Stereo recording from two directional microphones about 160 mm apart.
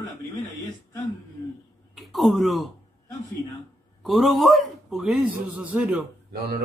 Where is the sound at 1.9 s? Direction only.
Centre (ahead or behind).